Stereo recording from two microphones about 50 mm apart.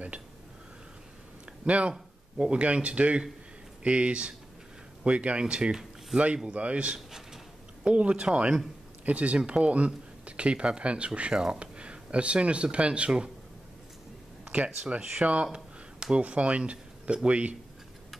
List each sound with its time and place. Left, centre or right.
1.7 s speech: right
9.0 s speech: right
14.4 s a sound: right
14.8 s speech: centre